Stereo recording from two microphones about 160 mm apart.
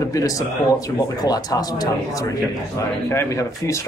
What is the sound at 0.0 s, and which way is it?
Speech, 20° left (ahead or behind).